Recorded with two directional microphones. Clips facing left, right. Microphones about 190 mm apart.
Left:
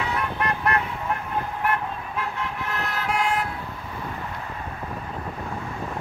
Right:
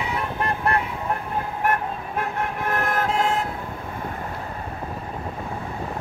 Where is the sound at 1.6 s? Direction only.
50° right (ahead or behind).